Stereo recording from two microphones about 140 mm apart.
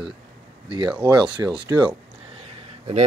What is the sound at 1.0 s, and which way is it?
Speech, 35° right (ahead or behind).